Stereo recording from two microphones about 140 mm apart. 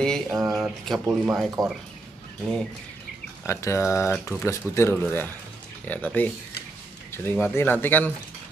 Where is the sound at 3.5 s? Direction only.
20° left (ahead or behind).